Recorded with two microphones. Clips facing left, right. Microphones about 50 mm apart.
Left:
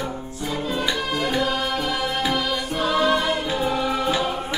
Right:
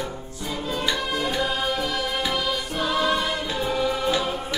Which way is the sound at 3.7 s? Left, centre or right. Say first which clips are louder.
Right 2 dB; centre.